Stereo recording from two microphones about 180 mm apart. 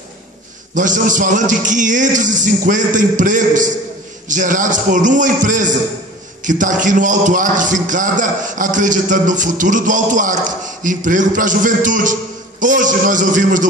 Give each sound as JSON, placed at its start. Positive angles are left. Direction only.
{"t": 0.7, "sound": "a man's voice", "side_deg": -45}